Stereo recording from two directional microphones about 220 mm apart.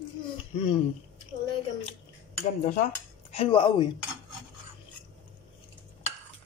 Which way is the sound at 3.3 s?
25° left (ahead or behind).